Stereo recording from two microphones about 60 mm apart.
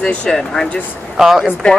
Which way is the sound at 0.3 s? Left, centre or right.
Centre.